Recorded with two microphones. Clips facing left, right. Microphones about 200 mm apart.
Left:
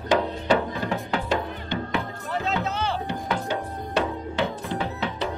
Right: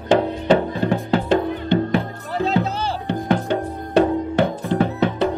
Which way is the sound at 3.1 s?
55° right (ahead or behind).